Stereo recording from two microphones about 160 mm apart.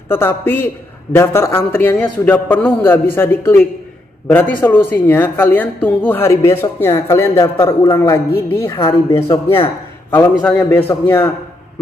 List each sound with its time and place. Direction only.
0.1 s speech: 15° left (ahead or behind)